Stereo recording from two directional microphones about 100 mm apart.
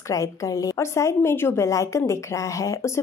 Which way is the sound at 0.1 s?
35° left (ahead or behind).